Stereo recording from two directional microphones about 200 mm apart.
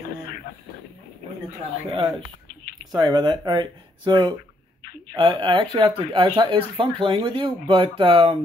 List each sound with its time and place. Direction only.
1.9 s speech: 25° right (ahead or behind)